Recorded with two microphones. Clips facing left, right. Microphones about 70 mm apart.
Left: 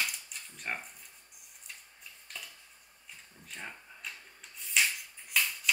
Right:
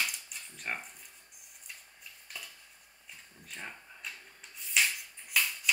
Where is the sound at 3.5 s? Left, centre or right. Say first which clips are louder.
Even; centre.